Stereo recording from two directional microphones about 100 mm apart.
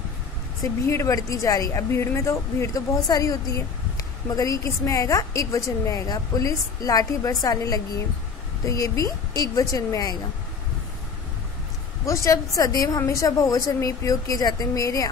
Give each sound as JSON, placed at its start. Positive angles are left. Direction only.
{"t": 0.8, "sound": "a woman's voice", "side_deg": 30}
{"t": 12.1, "sound": "a woman's voice", "side_deg": 35}